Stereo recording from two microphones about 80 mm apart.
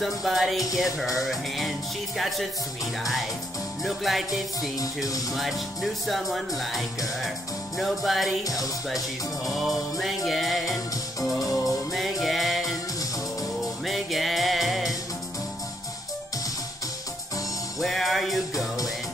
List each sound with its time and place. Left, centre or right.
0.0 s speech: centre
4.6 s music: left
5.3 s speech: centre
9.5 s speech: centre
11.2 s music: centre
13.8 s music: centre
17.7 s speech: centre